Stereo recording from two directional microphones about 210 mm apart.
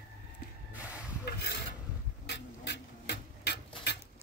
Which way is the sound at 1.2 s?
50° left (ahead or behind).